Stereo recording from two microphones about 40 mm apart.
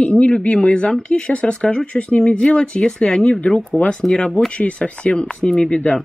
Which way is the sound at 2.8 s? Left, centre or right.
Centre.